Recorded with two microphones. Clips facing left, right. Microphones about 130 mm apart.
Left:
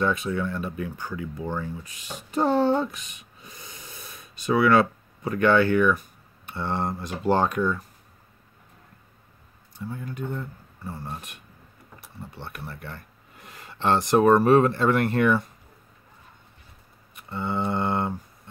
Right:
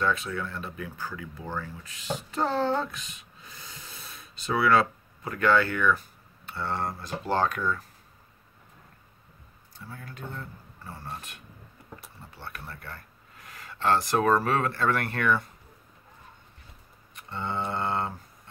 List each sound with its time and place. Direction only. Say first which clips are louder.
0.0 s speech: left 4 dB; 20° left (ahead or behind)
9.8 s speech: left 9 dB; 20° left (ahead or behind)
12.4 s speech: left 2 dB; 20° left (ahead or behind)
17.1 s speech: left 4 dB; 10° left (ahead or behind)